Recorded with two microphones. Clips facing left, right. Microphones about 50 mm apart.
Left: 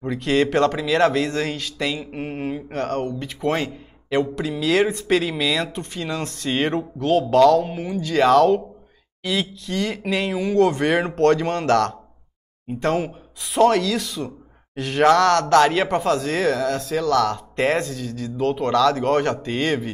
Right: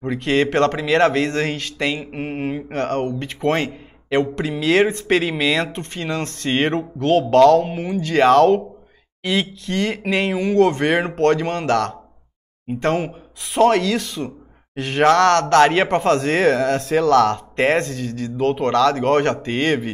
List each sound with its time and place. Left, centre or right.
0.0 s speech: right